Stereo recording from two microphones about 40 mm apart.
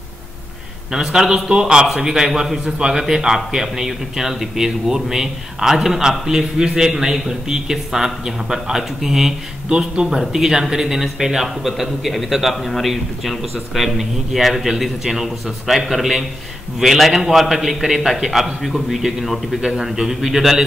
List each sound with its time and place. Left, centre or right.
0.9 s a man's voice: centre